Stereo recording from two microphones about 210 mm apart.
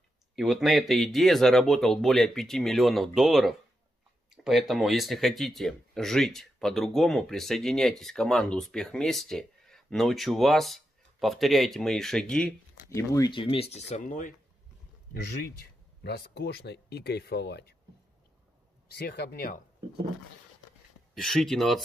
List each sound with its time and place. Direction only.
0.4 s speech: centre (ahead or behind); by 14.3 s 35° left (ahead or behind)
15.4 s speech: 50° left (ahead or behind)
18.9 s speech: 50° left (ahead or behind)
21.1 s speech: centre (ahead or behind)